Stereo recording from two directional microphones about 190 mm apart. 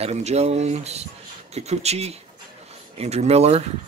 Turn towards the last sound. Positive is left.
turn(degrees=-35)  # may be behind; listen again after turning